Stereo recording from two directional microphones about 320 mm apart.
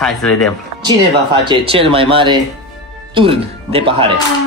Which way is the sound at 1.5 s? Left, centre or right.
Centre.